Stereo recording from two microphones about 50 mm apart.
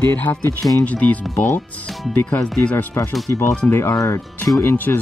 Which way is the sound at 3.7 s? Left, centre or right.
Left.